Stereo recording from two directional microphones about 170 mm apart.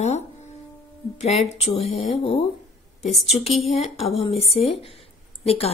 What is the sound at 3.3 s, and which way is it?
Speech, 35° left (ahead or behind).